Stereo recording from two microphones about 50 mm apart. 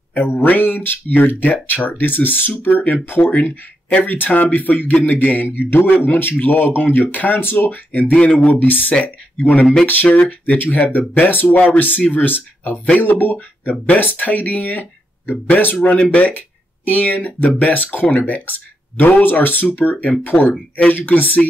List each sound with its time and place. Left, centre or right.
0.1 s a man's voice: left
11.5 s a man's voice: left
15.8 s speech: left
16.2 s a man's voice: left